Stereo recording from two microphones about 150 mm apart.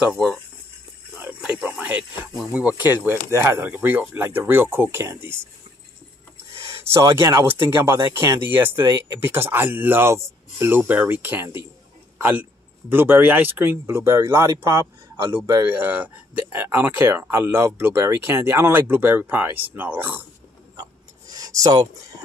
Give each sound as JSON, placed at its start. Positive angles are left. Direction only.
{"t": 0.0, "sound": "speech", "side_deg": 0}
{"t": 1.1, "sound": "snake", "side_deg": -10}
{"t": 2.5, "sound": "speech", "side_deg": -10}
{"t": 6.6, "sound": "speech", "side_deg": -20}
{"t": 21.3, "sound": "a sound", "side_deg": -25}